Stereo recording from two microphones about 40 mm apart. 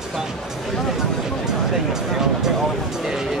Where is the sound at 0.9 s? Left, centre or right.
Centre.